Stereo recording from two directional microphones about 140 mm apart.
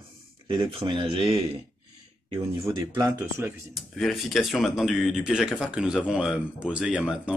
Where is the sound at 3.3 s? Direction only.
20° right (ahead or behind).